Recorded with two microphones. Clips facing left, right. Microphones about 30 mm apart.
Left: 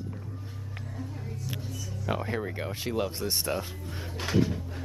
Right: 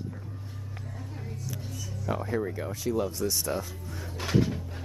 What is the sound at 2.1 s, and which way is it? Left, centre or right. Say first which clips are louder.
Speech: right 1 dB; left.